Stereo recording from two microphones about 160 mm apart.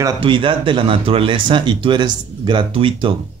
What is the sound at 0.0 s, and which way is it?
Speech, 30° right (ahead or behind).